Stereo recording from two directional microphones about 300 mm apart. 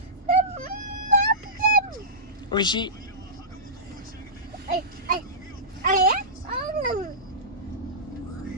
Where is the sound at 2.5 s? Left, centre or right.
Centre.